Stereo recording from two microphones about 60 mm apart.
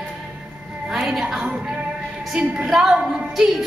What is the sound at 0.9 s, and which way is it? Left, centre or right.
A woman's voice, centre.